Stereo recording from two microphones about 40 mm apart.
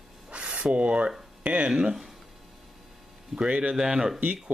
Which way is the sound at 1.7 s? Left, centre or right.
Centre.